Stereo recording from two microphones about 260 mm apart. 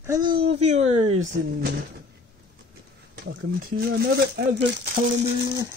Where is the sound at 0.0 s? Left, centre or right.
Centre.